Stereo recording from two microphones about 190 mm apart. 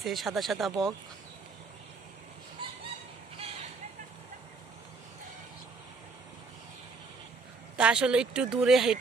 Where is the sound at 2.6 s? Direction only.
25° right (ahead or behind).